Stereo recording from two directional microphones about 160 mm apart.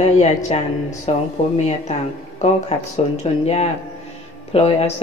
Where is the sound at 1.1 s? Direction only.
40° left (ahead or behind).